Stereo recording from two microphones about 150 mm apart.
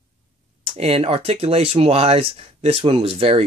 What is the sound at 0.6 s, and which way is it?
Speech, 40° right (ahead or behind).